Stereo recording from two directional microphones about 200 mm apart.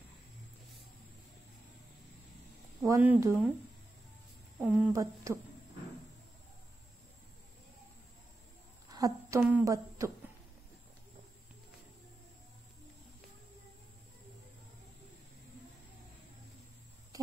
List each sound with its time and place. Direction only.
2.8 s speech: 10° right (ahead or behind)
4.6 s speech: 5° right (ahead or behind)
8.9 s speech: 15° right (ahead or behind)